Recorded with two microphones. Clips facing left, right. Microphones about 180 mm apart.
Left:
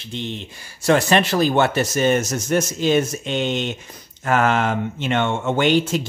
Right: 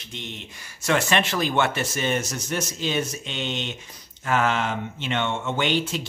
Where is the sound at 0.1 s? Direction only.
30° left (ahead or behind).